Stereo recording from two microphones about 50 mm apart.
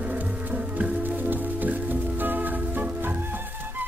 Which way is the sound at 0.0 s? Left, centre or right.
Right.